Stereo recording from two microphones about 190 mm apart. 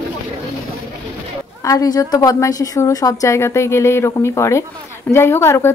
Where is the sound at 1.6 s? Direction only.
20° left (ahead or behind).